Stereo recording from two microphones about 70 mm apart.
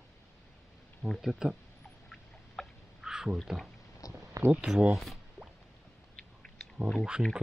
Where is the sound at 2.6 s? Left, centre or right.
Centre.